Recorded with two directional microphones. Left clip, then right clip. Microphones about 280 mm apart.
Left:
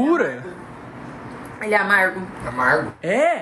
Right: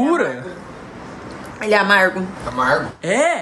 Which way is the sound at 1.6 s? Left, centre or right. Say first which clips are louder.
Right 3 dB; right.